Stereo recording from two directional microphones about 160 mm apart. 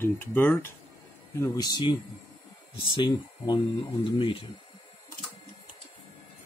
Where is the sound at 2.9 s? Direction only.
30° left (ahead or behind).